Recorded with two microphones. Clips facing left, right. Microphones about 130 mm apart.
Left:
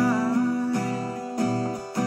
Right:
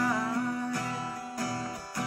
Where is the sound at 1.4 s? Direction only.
30° left (ahead or behind).